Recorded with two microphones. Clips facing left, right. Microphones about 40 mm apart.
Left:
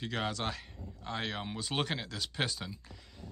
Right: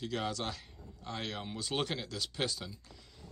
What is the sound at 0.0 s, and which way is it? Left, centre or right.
Speech, left.